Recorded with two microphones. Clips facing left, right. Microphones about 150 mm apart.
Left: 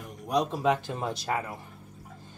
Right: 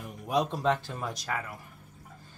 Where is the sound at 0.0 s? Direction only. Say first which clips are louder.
Left 1 dB; centre (ahead or behind).